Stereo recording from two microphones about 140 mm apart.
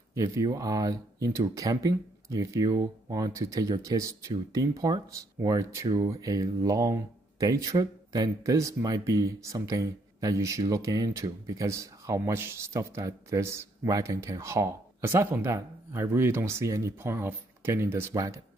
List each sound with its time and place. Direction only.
0.1 s speech: 20° right (ahead or behind)